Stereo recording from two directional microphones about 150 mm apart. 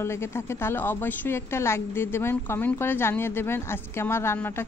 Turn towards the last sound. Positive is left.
turn(degrees=15)  # may be behind; listen again after turning